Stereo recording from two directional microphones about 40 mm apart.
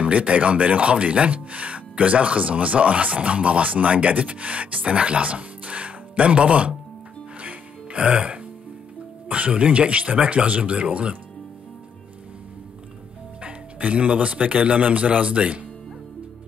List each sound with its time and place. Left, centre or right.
0.0 s speech: right
7.3 s music: right
9.3 s speech: right
13.4 s speech: right